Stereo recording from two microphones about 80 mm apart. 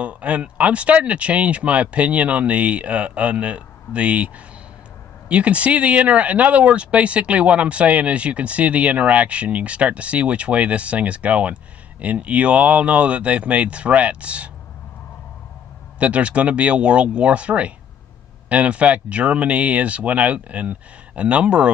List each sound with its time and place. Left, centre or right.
0.0 s speech: centre
5.3 s speech: centre
16.0 s speech: centre